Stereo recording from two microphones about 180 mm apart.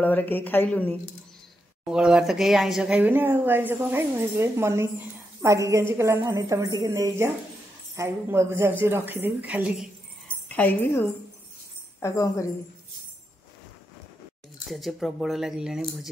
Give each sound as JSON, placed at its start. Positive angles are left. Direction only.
{"t": 0.0, "sound": "speech", "side_deg": 10}
{"t": 1.9, "sound": "speech", "side_deg": -5}
{"t": 10.5, "sound": "speech", "side_deg": 10}
{"t": 14.7, "sound": "speech", "side_deg": 0}